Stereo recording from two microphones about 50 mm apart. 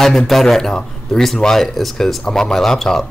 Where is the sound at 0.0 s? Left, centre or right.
Centre.